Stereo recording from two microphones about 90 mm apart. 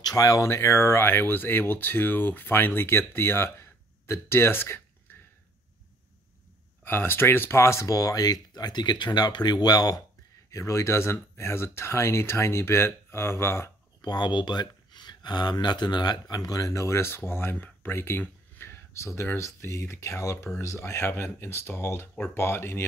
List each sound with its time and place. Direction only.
0.0 s speech: 40° left (ahead or behind); by 4.8 s 25° left (ahead or behind)
6.8 s speech: 25° left (ahead or behind); by 10.0 s 45° left (ahead or behind)
10.5 s speech: 35° left (ahead or behind)
14.0 s speech: 50° left (ahead or behind); by 22.8 s 25° left (ahead or behind)